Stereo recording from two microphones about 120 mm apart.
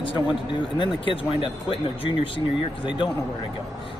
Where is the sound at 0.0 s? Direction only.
45° left (ahead or behind).